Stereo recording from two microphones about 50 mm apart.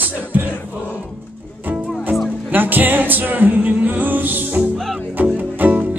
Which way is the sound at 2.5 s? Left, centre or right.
Right.